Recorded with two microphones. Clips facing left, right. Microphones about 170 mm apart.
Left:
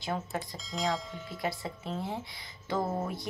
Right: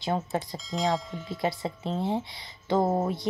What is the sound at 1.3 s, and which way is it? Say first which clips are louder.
A woman's voice: right 6 dB; 25° right (ahead or behind).